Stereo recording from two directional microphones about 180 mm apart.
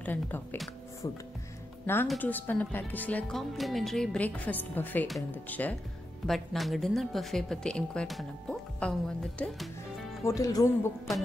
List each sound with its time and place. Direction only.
0.0 s a woman's voice: 10° left (ahead or behind)
10.2 s speech: 20° left (ahead or behind)